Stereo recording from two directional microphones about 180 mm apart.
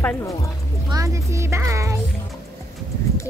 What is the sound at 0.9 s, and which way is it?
Speech, 20° right (ahead or behind).